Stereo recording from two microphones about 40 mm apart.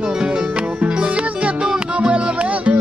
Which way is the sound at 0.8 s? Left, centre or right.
Right.